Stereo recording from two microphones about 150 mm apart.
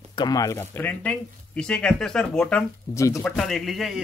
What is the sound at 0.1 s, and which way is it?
Speech, 25° left (ahead or behind).